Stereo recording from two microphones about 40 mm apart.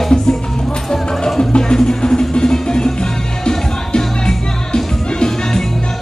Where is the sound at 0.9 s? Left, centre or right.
Centre.